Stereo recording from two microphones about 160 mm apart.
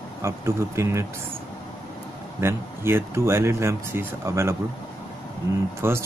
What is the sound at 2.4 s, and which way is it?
Speech, 15° right (ahead or behind).